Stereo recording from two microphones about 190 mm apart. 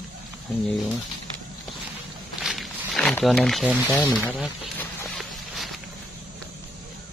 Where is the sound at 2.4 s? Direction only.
Centre (ahead or behind).